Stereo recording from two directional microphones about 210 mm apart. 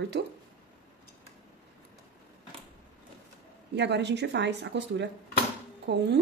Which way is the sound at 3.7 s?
55° right (ahead or behind).